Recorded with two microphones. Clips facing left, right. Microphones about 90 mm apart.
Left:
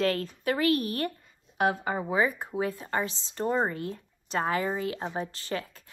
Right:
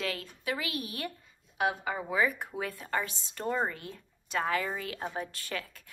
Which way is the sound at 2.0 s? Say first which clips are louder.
Left 1 dB; 25° left (ahead or behind).